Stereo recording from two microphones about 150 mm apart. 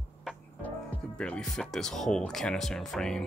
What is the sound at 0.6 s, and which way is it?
Speech, 10° left (ahead or behind).